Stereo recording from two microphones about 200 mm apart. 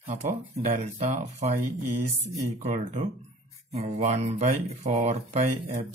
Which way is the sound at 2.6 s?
35° right (ahead or behind).